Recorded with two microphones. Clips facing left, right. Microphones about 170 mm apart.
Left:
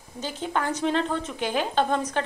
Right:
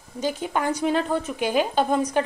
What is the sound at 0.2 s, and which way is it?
A woman's voice, 10° right (ahead or behind).